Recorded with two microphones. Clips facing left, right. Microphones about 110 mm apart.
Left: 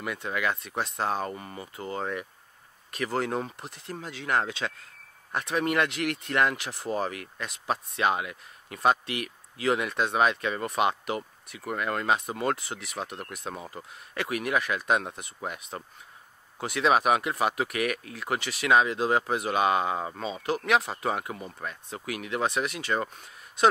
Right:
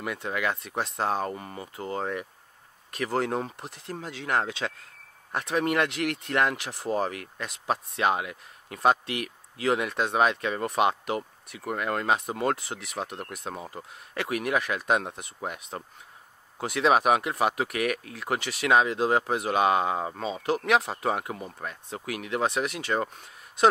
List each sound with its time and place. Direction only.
0.0 s speech: 40° right (ahead or behind)
12.5 s speech: 55° right (ahead or behind)
13.6 s speech: 25° right (ahead or behind)
14.1 s speech: 50° right (ahead or behind)
16.6 s speech: 55° right (ahead or behind)
18.4 s speech: 55° right (ahead or behind)
22.7 s speech: 60° right (ahead or behind)